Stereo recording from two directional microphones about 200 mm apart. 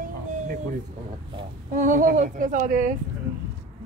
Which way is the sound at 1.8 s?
45° right (ahead or behind).